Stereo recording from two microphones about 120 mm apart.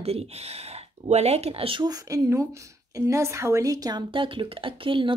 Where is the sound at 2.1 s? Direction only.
30° right (ahead or behind).